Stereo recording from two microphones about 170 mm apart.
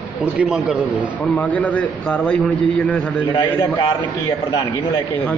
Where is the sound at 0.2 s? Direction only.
10° right (ahead or behind).